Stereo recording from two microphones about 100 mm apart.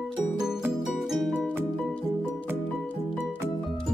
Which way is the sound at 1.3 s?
15° right (ahead or behind).